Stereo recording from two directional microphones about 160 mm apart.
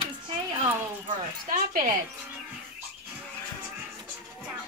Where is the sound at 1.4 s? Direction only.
60° right (ahead or behind).